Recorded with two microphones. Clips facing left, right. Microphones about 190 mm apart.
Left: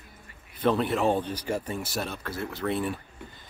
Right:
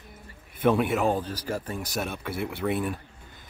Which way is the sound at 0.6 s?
10° right (ahead or behind).